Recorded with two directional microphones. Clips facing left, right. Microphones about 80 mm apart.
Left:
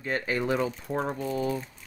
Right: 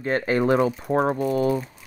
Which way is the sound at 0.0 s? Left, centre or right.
Right.